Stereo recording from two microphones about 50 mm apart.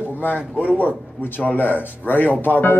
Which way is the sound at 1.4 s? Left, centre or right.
Left.